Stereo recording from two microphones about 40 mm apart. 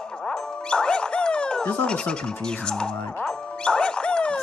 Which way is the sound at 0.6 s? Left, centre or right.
Left.